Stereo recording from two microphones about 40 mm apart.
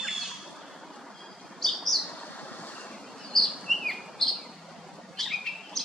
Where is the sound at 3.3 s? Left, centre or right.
Centre.